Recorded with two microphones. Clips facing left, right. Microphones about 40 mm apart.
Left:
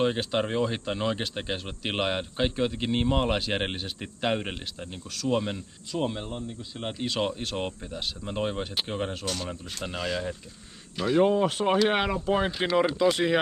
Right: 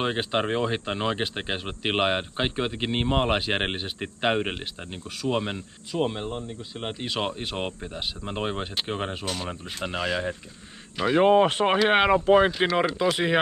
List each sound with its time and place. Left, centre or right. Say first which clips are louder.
0.0 s speech: even; right
11.2 s speech: right 5 dB; right
13.0 s speech: even; centre